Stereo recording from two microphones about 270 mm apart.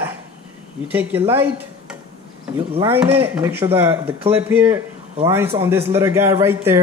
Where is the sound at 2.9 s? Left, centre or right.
Centre.